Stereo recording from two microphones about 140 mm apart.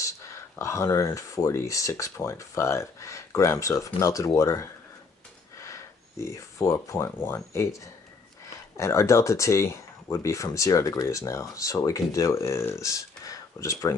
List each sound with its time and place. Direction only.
0.6 s speech: 20° left (ahead or behind)